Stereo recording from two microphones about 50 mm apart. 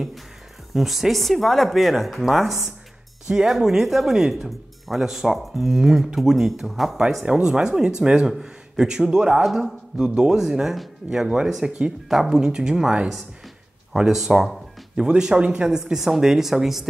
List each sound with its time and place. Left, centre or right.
0.7 s speech: centre
15.0 s speech: centre